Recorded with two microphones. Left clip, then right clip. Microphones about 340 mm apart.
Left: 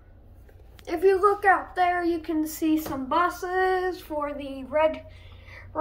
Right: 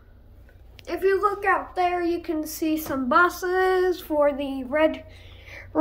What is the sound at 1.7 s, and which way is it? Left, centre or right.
Speech, centre.